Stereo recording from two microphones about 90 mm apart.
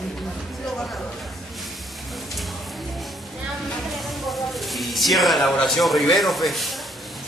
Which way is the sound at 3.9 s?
Centre (ahead or behind).